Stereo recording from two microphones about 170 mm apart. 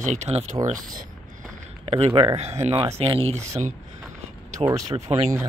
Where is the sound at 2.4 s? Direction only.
40° right (ahead or behind).